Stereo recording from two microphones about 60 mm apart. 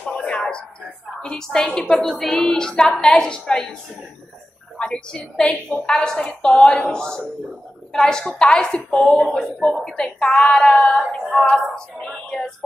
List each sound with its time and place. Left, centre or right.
0.0 s a sound: left
1.2 s a woman's voice: centre
4.7 s a woman's voice: centre
10.1 s a woman's voice: centre
11.1 s music: centre
11.4 s a woman's voice: centre